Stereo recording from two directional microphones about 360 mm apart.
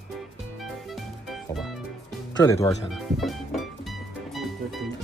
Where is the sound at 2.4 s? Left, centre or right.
Centre.